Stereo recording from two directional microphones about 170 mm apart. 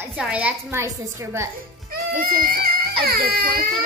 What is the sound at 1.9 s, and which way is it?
Speech, 55° right (ahead or behind).